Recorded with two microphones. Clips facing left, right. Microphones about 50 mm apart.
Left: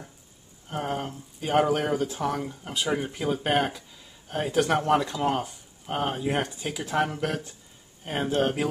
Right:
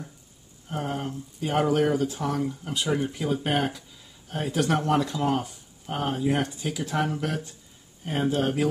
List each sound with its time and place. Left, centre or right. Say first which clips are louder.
0.7 s speech: even; centre